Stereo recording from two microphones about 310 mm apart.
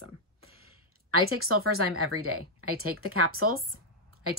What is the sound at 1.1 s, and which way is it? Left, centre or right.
Speech, right.